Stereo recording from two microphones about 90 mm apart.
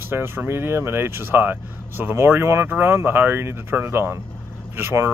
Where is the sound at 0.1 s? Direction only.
25° right (ahead or behind).